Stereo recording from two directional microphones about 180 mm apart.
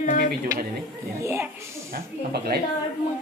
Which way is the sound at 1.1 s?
15° right (ahead or behind).